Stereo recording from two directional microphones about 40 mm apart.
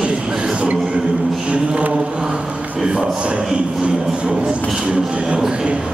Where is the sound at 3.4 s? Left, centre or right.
Centre.